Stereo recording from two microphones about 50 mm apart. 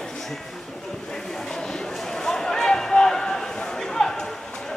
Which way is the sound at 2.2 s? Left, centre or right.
Centre.